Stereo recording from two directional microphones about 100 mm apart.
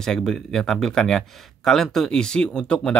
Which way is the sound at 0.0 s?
5° left (ahead or behind).